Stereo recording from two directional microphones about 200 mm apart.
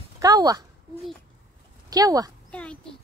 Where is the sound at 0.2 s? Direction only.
20° right (ahead or behind).